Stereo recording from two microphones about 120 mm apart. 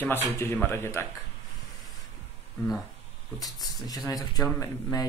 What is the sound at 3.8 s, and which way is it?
Speech, 30° left (ahead or behind).